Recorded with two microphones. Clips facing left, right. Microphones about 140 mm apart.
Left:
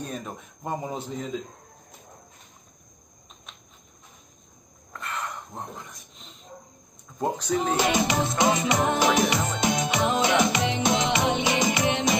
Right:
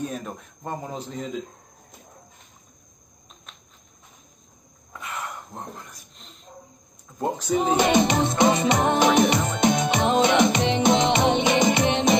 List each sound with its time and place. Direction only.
0.0 s speech: centre (ahead or behind)
4.9 s wild animals: 10° right (ahead or behind)
5.5 s a sound: centre (ahead or behind)
7.2 s speech: 10° right (ahead or behind)
7.9 s music: 25° right (ahead or behind)